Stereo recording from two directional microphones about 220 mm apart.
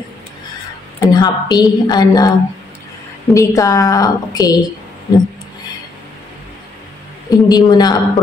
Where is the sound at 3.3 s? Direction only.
15° left (ahead or behind).